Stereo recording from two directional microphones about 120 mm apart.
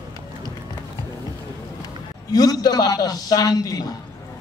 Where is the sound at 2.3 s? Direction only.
30° left (ahead or behind).